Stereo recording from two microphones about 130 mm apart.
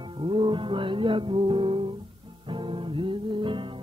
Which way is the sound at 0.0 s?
40° right (ahead or behind).